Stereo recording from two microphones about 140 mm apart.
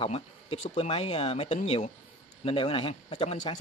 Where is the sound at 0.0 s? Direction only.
45° left (ahead or behind).